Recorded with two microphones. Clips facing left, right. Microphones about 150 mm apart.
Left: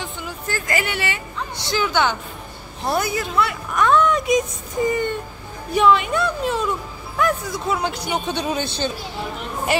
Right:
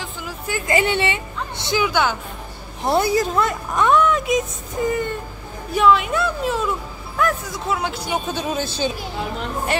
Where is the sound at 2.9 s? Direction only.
30° right (ahead or behind).